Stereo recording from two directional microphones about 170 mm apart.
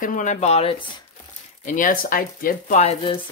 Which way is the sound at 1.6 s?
50° left (ahead or behind).